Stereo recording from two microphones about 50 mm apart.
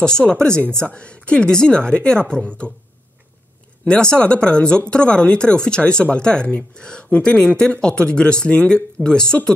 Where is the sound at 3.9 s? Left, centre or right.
Centre.